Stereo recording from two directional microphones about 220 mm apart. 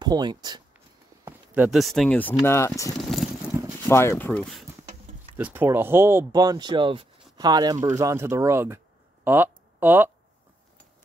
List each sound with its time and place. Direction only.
0.0 s speech: 20° right (ahead or behind)
1.2 s speech: 10° right (ahead or behind); by 2.9 s 15° left (ahead or behind)
3.0 s a sound: centre (ahead or behind)
3.8 s speech: 10° left (ahead or behind)
5.4 s speech: 10° right (ahead or behind)